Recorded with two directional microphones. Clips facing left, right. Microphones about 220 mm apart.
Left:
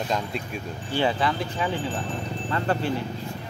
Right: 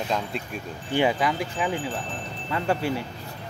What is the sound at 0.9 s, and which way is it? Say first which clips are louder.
Speech: right 1 dB; 15° right (ahead or behind).